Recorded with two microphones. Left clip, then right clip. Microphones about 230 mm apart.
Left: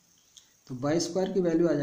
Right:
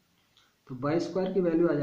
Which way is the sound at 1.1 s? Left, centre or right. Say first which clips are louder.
Right 1 dB; left.